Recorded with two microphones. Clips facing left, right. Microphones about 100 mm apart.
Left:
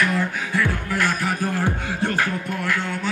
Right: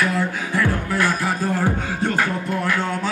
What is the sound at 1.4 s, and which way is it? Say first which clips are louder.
Music: right 4 dB; 15° right (ahead or behind).